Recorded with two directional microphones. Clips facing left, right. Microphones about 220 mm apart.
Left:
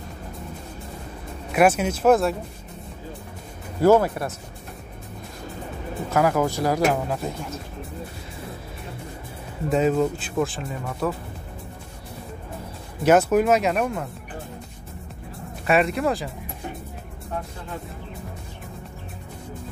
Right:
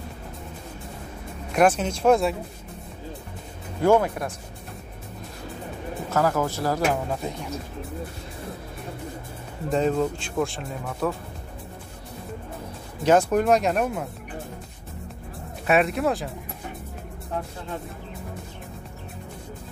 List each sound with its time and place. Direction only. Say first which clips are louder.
1.5 s speech: left 1 dB; 5° left (ahead or behind)
3.8 s speech: left 3 dB; 5° left (ahead or behind)
6.1 s speech: left 3 dB; 10° left (ahead or behind)
9.7 s speech: left 2 dB; 5° left (ahead or behind)
13.0 s speech: left 2 dB; 5° left (ahead or behind)
15.6 s speech: even; centre (ahead or behind)